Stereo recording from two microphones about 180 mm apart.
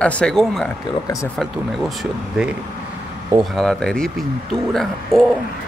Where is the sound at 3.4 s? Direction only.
Centre (ahead or behind).